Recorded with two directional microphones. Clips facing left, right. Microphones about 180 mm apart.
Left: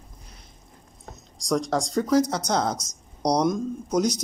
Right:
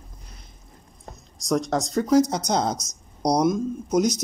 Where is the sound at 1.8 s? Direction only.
10° right (ahead or behind).